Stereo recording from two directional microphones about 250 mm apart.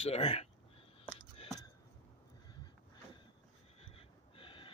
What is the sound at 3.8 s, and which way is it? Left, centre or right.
Snort, left.